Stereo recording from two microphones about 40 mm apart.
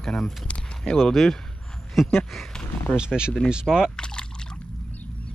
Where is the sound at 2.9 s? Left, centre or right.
Right.